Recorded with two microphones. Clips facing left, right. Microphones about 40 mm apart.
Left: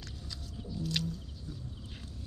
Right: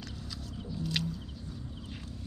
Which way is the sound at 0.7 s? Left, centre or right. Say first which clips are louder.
Right 1 dB; centre.